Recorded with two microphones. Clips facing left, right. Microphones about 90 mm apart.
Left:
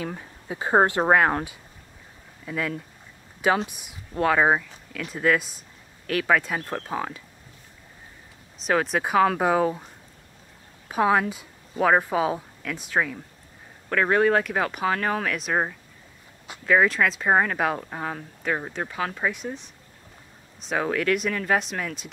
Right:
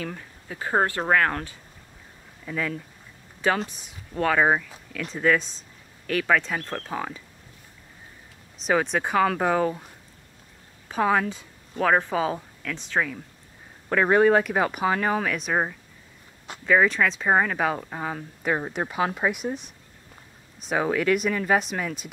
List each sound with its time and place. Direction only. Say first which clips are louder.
0.0 s speech: left 1 dB; 15° left (ahead or behind)
2.4 s speech: even; 5° left (ahead or behind)
8.6 s speech: even; centre (ahead or behind)
10.9 s a woman's voice: left 1 dB; 5° left (ahead or behind)
13.8 s speech: right 2 dB; 10° right (ahead or behind)
20.6 s speech: right 1 dB; 5° right (ahead or behind)